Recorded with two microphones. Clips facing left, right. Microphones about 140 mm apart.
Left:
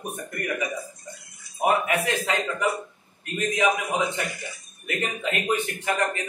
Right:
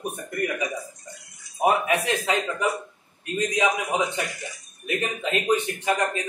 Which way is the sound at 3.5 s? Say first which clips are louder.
Left 1 dB; 15° right (ahead or behind).